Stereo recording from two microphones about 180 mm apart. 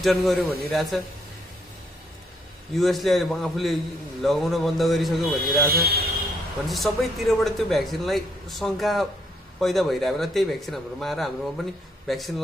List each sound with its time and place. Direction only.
0.0 s a man's voice: centre (ahead or behind)
2.7 s a man's voice: centre (ahead or behind)
5.4 s speech: 55° right (ahead or behind)
6.7 s a man's voice: centre (ahead or behind)